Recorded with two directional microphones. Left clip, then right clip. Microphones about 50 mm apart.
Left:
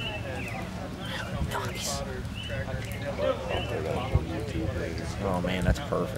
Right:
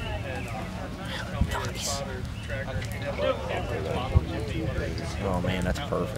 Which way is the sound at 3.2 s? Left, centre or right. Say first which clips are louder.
Right 1 dB; right.